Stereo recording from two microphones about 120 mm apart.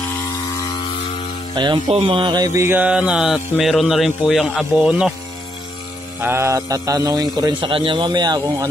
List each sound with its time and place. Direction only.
0.1 s chainsaw: 30° left (ahead or behind)
1.5 s speech: 40° right (ahead or behind)
2.7 s speech: 10° right (ahead or behind)
6.2 s a man's voice: 20° right (ahead or behind)
7.7 s speech: 45° right (ahead or behind)